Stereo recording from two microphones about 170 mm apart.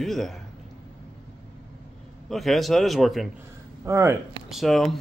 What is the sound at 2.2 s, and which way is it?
Speech, centre (ahead or behind).